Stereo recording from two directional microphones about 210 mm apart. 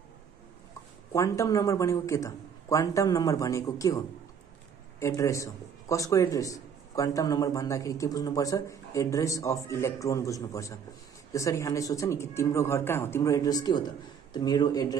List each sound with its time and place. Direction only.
1.1 s a man's voice: 15° left (ahead or behind)
5.0 s a man's voice: 15° left (ahead or behind)